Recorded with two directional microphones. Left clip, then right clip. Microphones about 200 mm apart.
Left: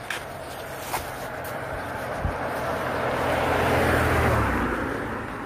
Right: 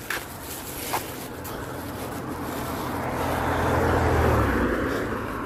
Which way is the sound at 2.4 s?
45° left (ahead or behind).